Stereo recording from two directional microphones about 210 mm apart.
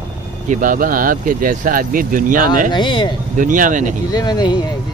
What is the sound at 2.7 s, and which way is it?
Speech, 20° left (ahead or behind).